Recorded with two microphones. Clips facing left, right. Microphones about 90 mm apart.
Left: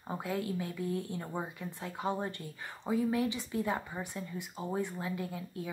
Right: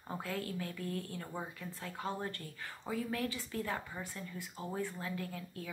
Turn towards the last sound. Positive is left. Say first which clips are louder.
# left 4 dB
turn(degrees=20)  # may be behind; listen again after turning